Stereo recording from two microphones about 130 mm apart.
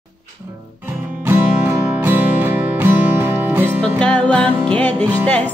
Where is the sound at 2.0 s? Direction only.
15° right (ahead or behind).